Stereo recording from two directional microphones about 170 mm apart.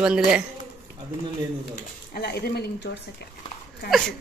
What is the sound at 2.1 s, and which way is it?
Speech, 65° left (ahead or behind).